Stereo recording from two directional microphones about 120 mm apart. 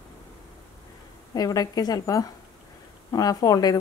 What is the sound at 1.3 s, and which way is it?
A woman's voice, 30° left (ahead or behind).